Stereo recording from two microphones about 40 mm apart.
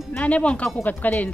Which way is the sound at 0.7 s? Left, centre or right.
Left.